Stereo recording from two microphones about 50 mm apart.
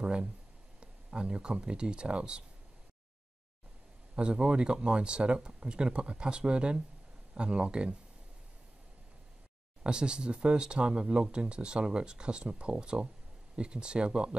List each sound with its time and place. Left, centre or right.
0.0 s a sound: centre
0.7 s speech: centre
4.1 s speech: right
9.8 s speech: centre